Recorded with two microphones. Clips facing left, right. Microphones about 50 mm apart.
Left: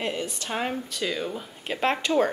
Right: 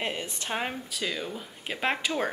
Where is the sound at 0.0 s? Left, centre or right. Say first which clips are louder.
Left 3 dB; right.